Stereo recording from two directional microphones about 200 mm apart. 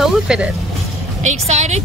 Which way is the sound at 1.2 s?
35° right (ahead or behind).